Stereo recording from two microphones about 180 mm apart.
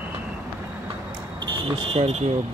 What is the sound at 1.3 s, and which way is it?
Smoke detector, 25° right (ahead or behind).